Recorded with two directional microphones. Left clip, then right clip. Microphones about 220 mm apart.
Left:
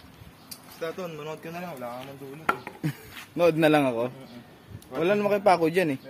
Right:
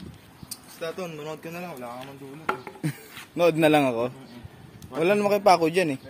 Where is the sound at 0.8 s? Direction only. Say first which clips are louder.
Right 1 dB; 30° right (ahead or behind).